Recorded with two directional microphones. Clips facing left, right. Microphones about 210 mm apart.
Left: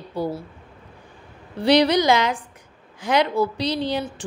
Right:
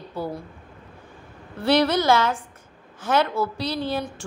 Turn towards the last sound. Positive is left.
turn(degrees=20)  # may be behind; listen again after turning